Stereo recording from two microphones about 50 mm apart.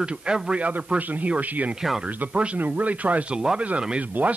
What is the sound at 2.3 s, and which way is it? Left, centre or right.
Speech, right.